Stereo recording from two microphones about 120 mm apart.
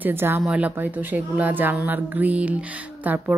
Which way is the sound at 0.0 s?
20° right (ahead or behind).